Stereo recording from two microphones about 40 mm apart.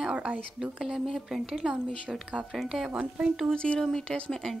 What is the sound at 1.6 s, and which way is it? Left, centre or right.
Speech, right.